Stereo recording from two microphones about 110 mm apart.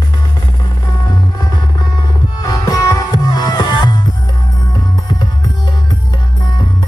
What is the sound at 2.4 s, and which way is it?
Music, 35° left (ahead or behind).